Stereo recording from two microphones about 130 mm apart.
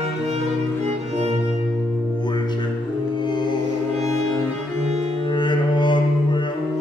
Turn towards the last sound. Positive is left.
turn(degrees=35)  # may be behind; listen again after turning